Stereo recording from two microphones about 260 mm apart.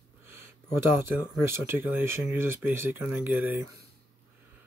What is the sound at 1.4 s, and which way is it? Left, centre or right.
Speech, centre.